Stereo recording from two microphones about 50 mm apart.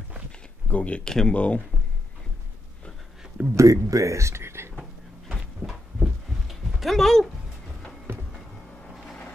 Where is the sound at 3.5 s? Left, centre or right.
Right.